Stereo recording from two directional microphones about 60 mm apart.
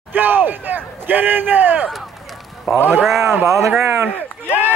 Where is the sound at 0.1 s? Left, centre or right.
Right.